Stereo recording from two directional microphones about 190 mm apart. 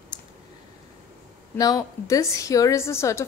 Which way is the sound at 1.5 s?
20° left (ahead or behind).